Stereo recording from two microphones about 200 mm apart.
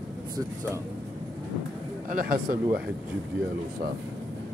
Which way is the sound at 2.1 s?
45° right (ahead or behind).